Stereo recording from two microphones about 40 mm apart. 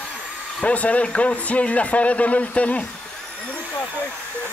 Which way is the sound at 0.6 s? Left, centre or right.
Left.